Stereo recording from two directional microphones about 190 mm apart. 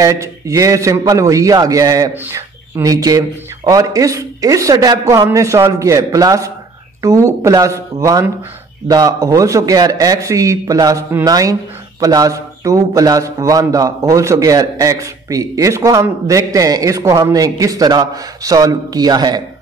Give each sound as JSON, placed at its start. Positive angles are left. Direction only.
{"t": 0.0, "sound": "a man's voice", "side_deg": -15}